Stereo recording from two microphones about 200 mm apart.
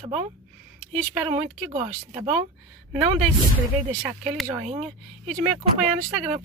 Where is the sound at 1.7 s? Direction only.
30° right (ahead or behind).